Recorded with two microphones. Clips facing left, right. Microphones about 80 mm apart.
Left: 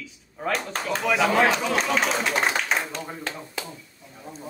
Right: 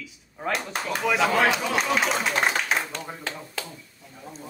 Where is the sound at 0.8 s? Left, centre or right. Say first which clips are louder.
Even; centre.